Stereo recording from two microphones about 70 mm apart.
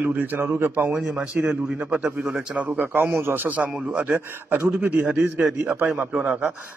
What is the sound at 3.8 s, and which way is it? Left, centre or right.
Speech, centre.